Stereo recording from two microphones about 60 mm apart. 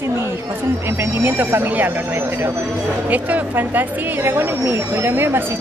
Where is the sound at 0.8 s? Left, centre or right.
Right.